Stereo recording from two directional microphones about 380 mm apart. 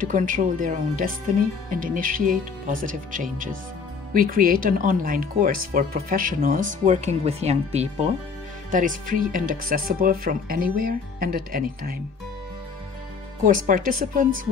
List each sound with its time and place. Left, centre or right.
0.0 s speech: right
13.4 s speech: right